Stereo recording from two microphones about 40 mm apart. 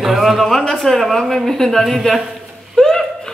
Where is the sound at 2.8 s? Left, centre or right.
Centre.